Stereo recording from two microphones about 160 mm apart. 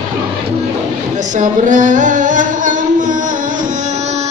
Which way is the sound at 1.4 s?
55° right (ahead or behind).